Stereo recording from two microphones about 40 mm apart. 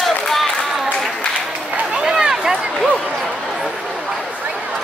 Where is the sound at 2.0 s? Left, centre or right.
Centre.